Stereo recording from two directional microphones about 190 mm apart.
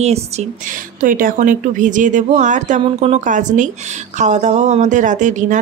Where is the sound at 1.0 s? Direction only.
45° right (ahead or behind).